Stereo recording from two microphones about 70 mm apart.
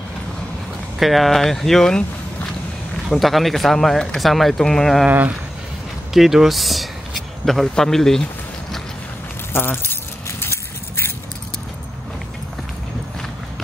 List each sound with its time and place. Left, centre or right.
0.9 s speech: centre
3.1 s speech: centre
6.1 s speech: centre
9.5 s speech: left
10.2 s a sound: left